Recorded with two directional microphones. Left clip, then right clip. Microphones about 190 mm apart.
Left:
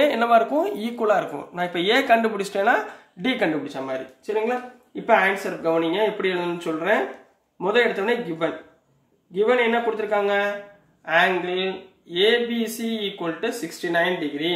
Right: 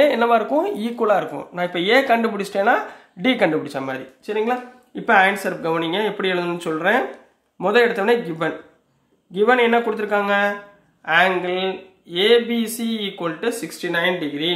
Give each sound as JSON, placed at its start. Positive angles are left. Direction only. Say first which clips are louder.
{"t": 0.0, "sound": "speech", "louder": "right 2 dB", "side_deg": -20}
{"t": 3.6, "sound": "speech", "louder": "right 4 dB", "side_deg": -40}
{"t": 5.0, "sound": "speech", "louder": "right 3 dB", "side_deg": -45}